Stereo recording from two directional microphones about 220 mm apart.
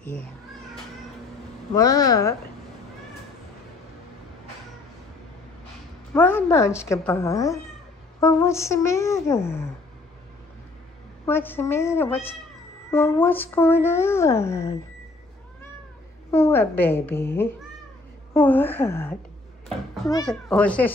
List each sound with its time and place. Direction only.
1.7 s speech: 15° left (ahead or behind)
6.1 s speech: 10° left (ahead or behind)
11.2 s speech: 10° left (ahead or behind)
16.4 s speech: 10° left (ahead or behind)
20.2 s speech: 5° left (ahead or behind)